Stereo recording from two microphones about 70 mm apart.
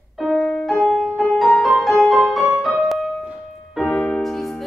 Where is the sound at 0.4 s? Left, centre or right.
Centre.